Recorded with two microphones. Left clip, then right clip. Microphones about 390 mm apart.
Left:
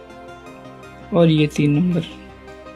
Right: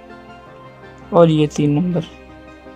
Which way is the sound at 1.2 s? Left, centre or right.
Centre.